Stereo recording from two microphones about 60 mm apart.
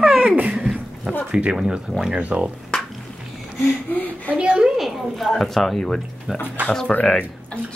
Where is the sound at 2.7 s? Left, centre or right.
Centre.